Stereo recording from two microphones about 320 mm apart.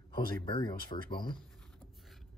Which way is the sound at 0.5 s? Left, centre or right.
Centre.